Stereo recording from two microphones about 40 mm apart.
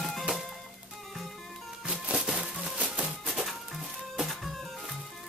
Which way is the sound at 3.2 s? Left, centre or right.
Centre.